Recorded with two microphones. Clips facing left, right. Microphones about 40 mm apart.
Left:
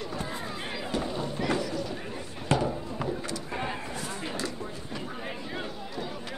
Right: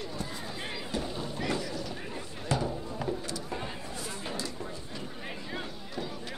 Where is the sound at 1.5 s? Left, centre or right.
Left.